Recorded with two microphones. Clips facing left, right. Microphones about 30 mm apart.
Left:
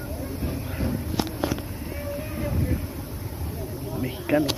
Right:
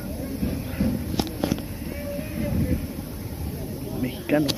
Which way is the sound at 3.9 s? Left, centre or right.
Centre.